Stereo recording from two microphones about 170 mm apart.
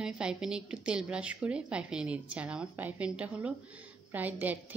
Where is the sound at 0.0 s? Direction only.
5° right (ahead or behind).